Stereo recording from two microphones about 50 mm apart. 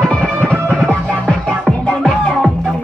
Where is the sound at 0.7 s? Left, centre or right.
Right.